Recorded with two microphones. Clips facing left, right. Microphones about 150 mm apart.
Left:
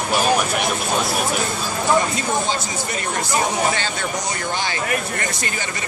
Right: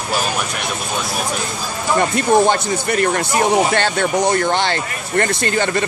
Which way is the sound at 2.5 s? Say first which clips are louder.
Right 7 dB; 60° right (ahead or behind).